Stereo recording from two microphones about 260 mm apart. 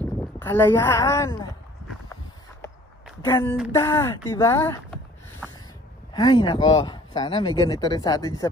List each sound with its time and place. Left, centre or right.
0.0 s speech: centre
3.3 s speech: centre
6.1 s speech: centre